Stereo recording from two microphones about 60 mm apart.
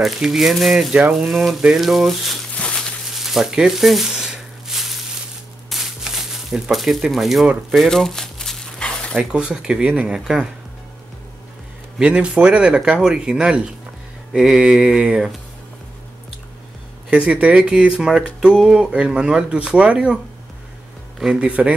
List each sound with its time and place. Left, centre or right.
0.0 s speech: centre
2.5 s a sound: centre
3.2 s a sound: centre
9.3 s speech: centre
9.8 s a sound: right
10.1 s speech: centre
12.0 s speech: centre
14.3 s mantra: centre
14.6 s a sound: right
14.9 s speech: centre
17.1 s speech: centre
21.2 s speech: centre